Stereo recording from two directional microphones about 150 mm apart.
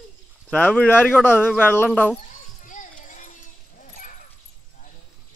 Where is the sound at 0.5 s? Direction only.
10° left (ahead or behind).